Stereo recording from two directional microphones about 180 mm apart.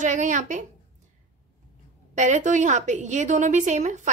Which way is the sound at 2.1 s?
40° right (ahead or behind).